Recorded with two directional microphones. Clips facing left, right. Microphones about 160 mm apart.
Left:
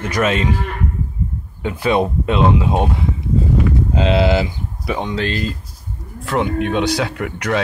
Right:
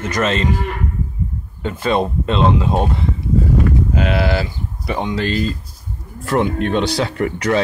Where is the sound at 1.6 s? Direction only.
10° left (ahead or behind).